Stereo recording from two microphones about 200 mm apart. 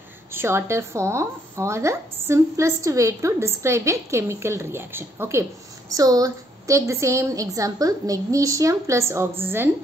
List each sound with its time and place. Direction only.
0.3 s a woman's voice: 10° right (ahead or behind)